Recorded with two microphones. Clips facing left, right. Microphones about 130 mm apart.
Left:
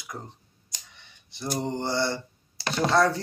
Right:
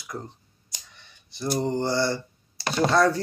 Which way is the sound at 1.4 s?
20° left (ahead or behind).